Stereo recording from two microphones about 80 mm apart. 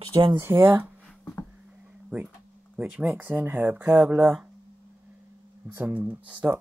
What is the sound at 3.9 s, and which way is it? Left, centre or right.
Speech, centre.